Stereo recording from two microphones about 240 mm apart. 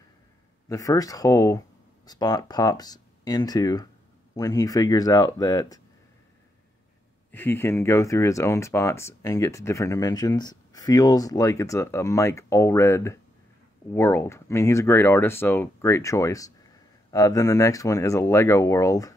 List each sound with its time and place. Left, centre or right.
0.7 s speech: centre
7.2 s speech: centre